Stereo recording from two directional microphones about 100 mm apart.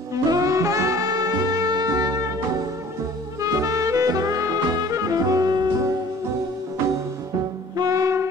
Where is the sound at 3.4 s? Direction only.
35° right (ahead or behind).